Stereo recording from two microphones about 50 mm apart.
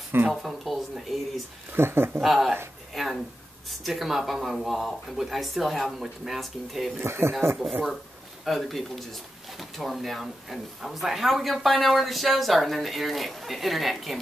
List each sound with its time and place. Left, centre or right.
0.3 s speech: centre
1.7 s speech: right
2.1 s speech: centre
2.9 s a sound: centre
3.8 s speech: centre
7.0 s speech: right
8.5 s speech: centre